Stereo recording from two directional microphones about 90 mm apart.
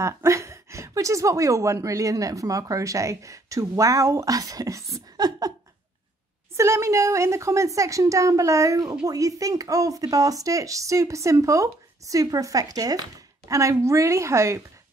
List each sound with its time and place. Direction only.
0.0 s speech: 35° right (ahead or behind)
5.1 s a sound: 50° right (ahead or behind)
6.5 s speech: 30° right (ahead or behind)